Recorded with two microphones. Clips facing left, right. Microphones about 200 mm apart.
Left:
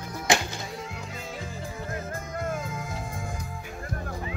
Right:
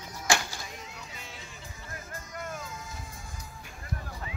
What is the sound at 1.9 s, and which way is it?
Music, 55° left (ahead or behind).